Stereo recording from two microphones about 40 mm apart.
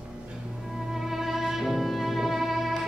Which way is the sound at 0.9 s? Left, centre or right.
Centre.